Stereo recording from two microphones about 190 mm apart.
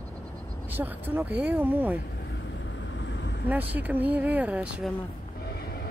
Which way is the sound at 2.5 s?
75° left (ahead or behind).